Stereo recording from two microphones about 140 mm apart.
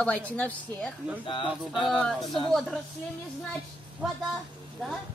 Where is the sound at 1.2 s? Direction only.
35° left (ahead or behind).